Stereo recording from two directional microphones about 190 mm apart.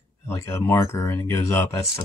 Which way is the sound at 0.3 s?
15° left (ahead or behind).